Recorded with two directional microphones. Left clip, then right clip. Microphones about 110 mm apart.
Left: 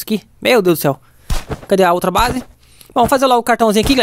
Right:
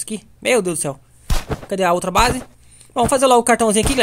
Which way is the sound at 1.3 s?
Centre (ahead or behind).